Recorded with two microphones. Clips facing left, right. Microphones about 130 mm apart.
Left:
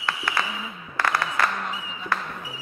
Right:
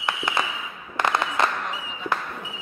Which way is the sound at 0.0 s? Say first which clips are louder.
Right 1 dB; 20° right (ahead or behind).